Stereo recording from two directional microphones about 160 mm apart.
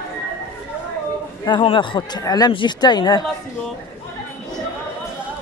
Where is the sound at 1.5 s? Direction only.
30° left (ahead or behind).